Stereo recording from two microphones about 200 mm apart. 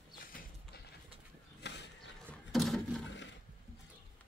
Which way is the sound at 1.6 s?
60° left (ahead or behind).